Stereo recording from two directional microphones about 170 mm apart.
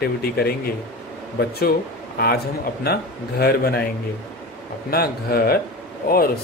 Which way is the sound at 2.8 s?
65° left (ahead or behind).